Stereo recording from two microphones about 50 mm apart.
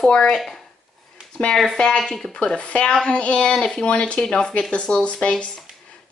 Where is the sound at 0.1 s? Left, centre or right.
Centre.